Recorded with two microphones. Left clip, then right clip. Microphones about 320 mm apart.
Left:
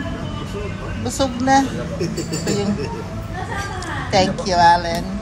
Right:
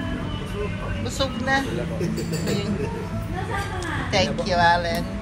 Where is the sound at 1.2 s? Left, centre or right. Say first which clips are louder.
Left 7 dB; centre.